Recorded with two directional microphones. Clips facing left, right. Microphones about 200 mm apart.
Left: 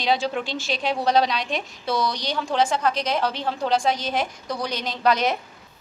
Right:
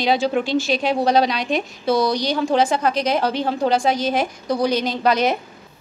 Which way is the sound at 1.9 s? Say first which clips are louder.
Right 6 dB; 40° right (ahead or behind).